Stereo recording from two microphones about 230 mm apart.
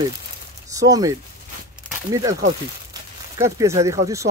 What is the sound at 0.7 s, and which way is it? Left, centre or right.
Speech, centre.